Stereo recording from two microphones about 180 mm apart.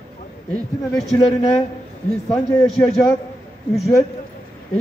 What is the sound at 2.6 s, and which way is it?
Speech, centre (ahead or behind).